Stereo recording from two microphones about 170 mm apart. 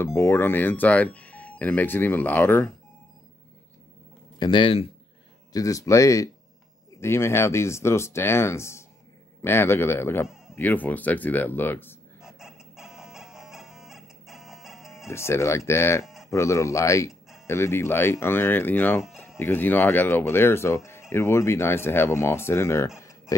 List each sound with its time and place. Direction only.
0.0 s speech: 15° left (ahead or behind)
4.4 s speech: 30° left (ahead or behind)
5.5 s speech: 20° left (ahead or behind)
12.2 s chicken: centre (ahead or behind)
15.0 s speech: 15° left (ahead or behind)
19.0 s music: centre (ahead or behind)
19.3 s speech: 10° left (ahead or behind)
22.9 s a sound: 20° left (ahead or behind)